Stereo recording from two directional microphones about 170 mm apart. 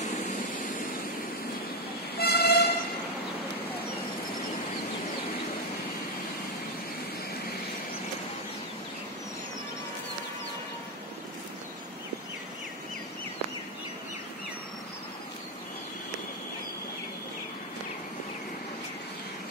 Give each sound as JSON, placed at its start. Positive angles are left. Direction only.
{"t": 2.1, "sound": "vehicle", "side_deg": 70}